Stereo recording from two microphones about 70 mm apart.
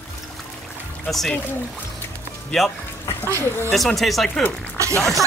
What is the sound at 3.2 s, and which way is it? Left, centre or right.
Speech, left.